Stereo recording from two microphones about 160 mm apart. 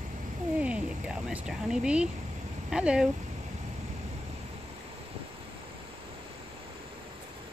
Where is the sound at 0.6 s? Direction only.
5° right (ahead or behind).